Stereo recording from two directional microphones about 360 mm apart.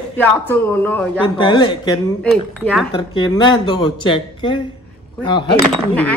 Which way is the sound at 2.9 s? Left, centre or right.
Centre.